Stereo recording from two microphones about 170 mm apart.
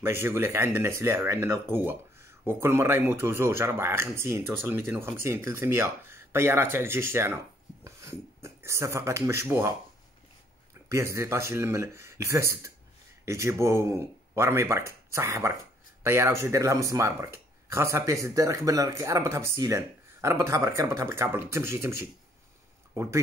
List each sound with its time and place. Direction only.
0.0 s speech: 15° right (ahead or behind)
10.9 s speech: 15° right (ahead or behind)